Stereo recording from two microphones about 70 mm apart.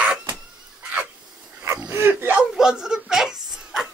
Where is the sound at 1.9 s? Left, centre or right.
Right.